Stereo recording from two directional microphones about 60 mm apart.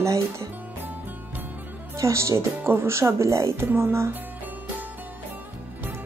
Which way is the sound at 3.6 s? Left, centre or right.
Right.